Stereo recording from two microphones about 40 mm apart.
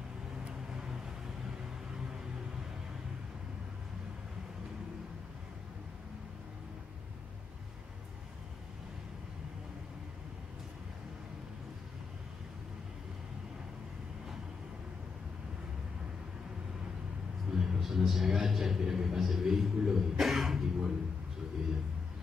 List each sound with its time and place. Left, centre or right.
0.7 s vehicle: centre
17.5 s a man's voice: centre